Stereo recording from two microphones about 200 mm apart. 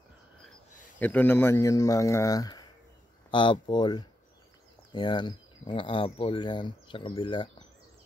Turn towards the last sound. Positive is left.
turn(degrees=25)  # may be behind; listen again after turning